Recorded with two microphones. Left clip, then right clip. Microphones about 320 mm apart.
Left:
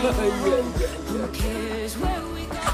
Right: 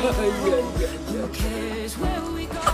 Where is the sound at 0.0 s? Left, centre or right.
Centre.